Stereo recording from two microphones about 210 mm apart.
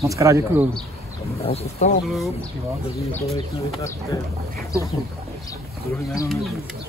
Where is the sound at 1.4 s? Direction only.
30° left (ahead or behind).